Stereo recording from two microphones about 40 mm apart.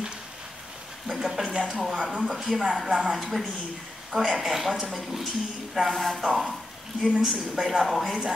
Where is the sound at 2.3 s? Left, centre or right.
Centre.